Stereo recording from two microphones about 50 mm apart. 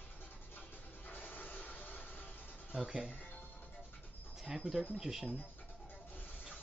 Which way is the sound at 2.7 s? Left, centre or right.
Centre.